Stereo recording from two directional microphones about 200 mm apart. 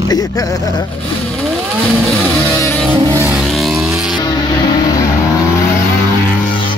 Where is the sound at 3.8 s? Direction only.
5° right (ahead or behind).